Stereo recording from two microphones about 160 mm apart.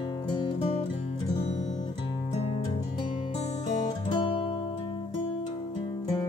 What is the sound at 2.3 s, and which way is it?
Music, 35° left (ahead or behind).